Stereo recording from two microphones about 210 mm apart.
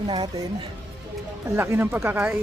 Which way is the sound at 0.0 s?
20° right (ahead or behind).